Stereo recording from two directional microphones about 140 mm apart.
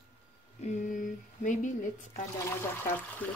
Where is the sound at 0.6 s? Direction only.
65° left (ahead or behind).